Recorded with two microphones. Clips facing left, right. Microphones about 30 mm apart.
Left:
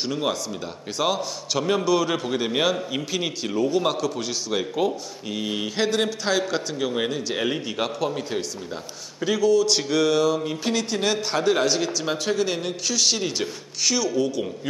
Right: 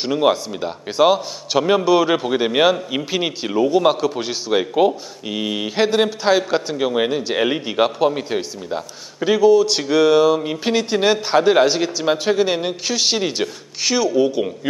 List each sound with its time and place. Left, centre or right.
0.0 s a man's voice: right